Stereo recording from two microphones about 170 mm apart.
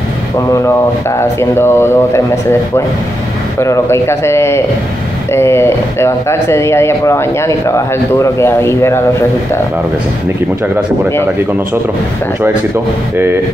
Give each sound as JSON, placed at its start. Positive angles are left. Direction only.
{"t": 0.5, "sound": "speech", "side_deg": 20}
{"t": 3.5, "sound": "speech", "side_deg": 15}